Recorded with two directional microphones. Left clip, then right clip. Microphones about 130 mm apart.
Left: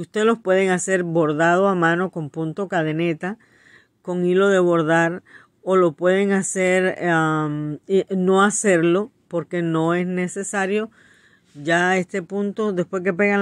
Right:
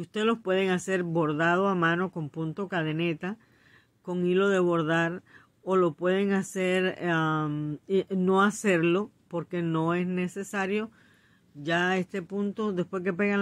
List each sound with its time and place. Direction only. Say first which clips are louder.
0.0 s speech: left 8 dB; 30° left (ahead or behind)